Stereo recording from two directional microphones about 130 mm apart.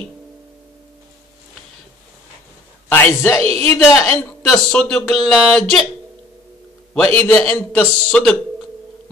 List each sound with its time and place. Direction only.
2.9 s a man's voice: 20° left (ahead or behind)
3.4 s speech: 50° right (ahead or behind)
3.7 s speech: 5° left (ahead or behind)
7.2 s speech: 10° left (ahead or behind)